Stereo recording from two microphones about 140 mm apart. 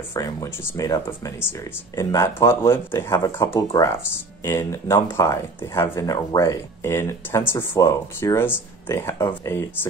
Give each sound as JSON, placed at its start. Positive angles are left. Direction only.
{"t": 0.1, "sound": "speech", "side_deg": 25}